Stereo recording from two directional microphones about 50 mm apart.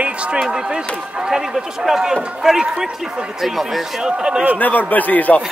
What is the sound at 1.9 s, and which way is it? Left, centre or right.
Speech, centre.